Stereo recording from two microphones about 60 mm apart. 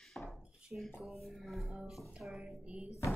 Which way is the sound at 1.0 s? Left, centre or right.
Centre.